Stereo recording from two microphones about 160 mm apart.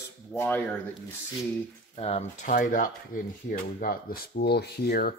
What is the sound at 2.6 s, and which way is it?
Speech, 60° left (ahead or behind).